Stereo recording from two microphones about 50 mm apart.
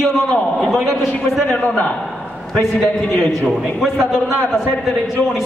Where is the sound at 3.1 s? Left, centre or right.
Left.